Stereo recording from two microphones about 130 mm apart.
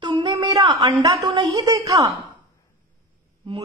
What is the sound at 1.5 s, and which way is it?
Speech, 25° right (ahead or behind).